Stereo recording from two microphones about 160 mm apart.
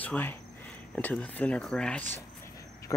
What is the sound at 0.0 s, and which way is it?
Speech, 10° left (ahead or behind).